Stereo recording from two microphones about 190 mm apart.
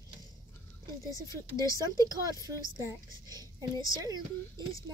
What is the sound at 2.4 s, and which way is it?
A woman's voice, 15° right (ahead or behind).